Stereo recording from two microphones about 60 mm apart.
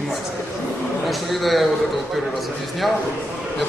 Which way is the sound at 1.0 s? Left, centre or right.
Centre.